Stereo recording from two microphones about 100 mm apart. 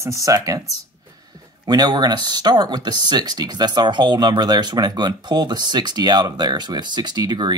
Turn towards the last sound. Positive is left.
turn(degrees=-45)  # may be behind; listen again after turning